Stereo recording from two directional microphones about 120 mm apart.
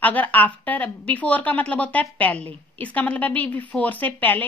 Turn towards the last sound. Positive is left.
turn(degrees=15)  # may be behind; listen again after turning